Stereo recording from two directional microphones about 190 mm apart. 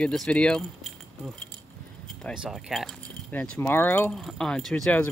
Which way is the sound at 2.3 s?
Centre (ahead or behind).